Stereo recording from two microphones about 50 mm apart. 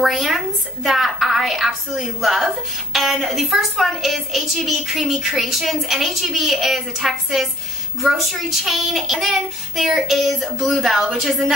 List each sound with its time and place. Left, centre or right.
0.0 s a woman's voice: centre